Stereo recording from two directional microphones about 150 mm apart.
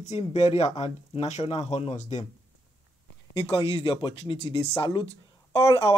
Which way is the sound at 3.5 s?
35° left (ahead or behind).